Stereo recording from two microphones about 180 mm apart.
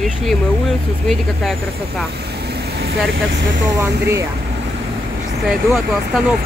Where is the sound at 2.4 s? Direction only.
65° right (ahead or behind).